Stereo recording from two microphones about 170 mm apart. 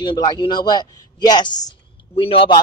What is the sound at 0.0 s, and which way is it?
Speech, 25° left (ahead or behind).